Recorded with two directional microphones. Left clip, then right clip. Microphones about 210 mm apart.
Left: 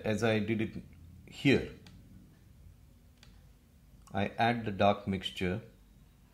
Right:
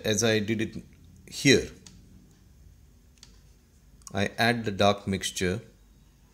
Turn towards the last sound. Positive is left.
turn(degrees=-30)  # may be behind; listen again after turning